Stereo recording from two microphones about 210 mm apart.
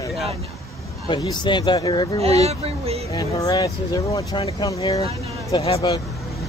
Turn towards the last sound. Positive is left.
turn(degrees=25)  # may be behind; listen again after turning